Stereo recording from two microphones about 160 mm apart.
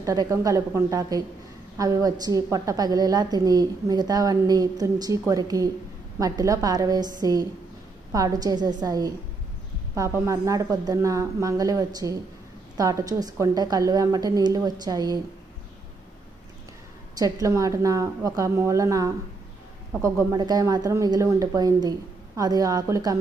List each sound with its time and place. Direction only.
0.0 s a woman's voice: 20° right (ahead or behind)
17.1 s a woman's voice: 20° right (ahead or behind)